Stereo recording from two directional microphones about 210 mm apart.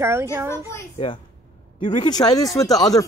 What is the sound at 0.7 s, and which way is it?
A child's voice, 20° left (ahead or behind).